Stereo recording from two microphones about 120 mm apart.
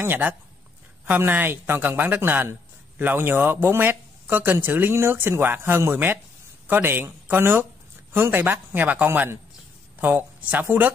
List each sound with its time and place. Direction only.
0.0 s speech: 15° right (ahead or behind)